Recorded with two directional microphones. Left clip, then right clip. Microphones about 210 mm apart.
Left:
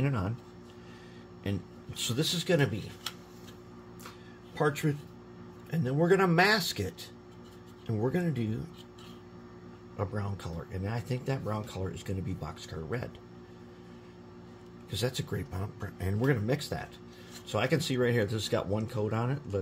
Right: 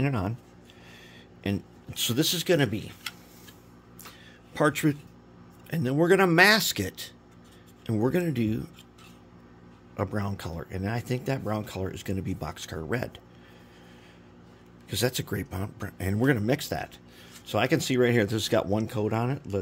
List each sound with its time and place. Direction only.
0.0 s speech: 50° right (ahead or behind)
1.4 s speech: 50° right (ahead or behind)
4.6 s speech: 50° right (ahead or behind)
9.9 s speech: 55° right (ahead or behind)
14.9 s speech: 55° right (ahead or behind)